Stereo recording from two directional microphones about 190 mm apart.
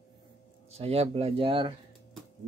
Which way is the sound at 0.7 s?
30° right (ahead or behind).